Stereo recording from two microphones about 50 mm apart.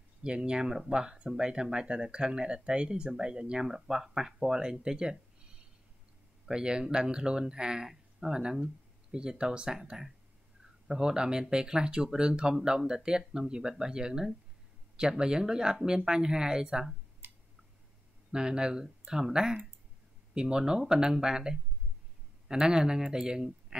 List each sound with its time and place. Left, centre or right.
0.2 s speech: centre
6.4 s speech: centre
18.3 s speech: centre